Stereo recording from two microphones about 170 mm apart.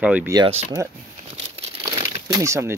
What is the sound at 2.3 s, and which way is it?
Speech, 15° right (ahead or behind).